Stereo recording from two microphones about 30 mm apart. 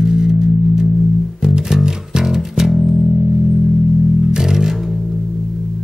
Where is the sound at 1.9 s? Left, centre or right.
Centre.